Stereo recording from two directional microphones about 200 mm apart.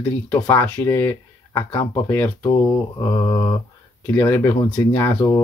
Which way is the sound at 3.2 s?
20° left (ahead or behind).